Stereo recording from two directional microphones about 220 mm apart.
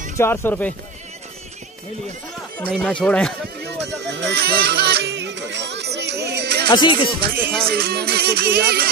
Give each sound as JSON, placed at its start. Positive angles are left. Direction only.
{"t": 0.2, "sound": "speech", "side_deg": 10}
{"t": 2.7, "sound": "speech", "side_deg": 5}
{"t": 3.6, "sound": "music", "side_deg": -50}
{"t": 6.7, "sound": "speech", "side_deg": 20}
{"t": 7.6, "sound": "music", "side_deg": -45}